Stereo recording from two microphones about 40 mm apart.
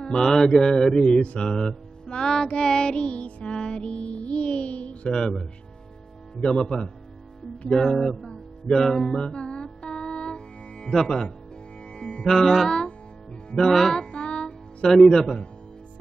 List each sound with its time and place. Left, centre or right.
0.2 s mantra: centre
1.4 s music: centre; by 3.5 s left
3.5 s music: left
6.4 s music: left
7.7 s mantra: centre
8.3 s music: centre
9.2 s music: left
10.9 s mantra: centre
11.9 s music: left
12.2 s music: centre; by 14.9 s left
14.9 s mantra: centre